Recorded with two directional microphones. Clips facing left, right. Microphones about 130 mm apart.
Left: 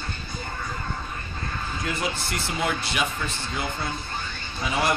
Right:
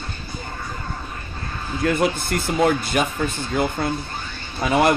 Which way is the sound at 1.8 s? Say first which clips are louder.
Right 10 dB; 55° right (ahead or behind).